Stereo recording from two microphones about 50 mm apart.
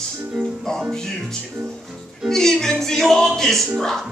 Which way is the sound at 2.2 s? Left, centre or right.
Centre.